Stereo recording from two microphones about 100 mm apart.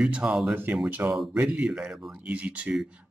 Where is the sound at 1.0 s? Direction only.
25° right (ahead or behind).